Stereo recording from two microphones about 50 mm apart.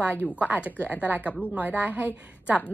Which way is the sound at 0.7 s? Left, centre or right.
Right.